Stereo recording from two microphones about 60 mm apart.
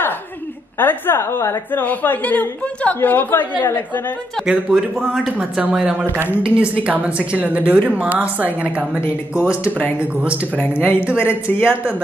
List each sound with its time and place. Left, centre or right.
0.7 s a woman's voice: left
1.7 s a woman's voice: left
4.5 s speech: centre
4.9 s speech: centre
5.4 s a woman's voice: right
9.7 s a woman's voice: left
9.9 s a woman's voice: right
10.5 s a woman's voice: left
11.0 s a woman's voice: right
11.4 s a woman's voice: left